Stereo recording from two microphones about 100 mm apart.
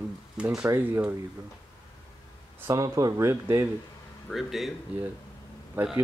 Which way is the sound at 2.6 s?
35° right (ahead or behind).